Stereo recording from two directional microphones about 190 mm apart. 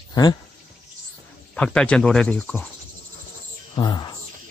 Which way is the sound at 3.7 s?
25° left (ahead or behind).